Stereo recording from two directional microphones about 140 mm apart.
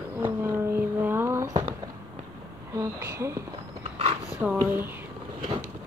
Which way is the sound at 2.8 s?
20° right (ahead or behind).